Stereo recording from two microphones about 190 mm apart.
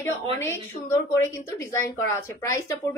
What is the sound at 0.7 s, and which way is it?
A woman's voice, 10° left (ahead or behind).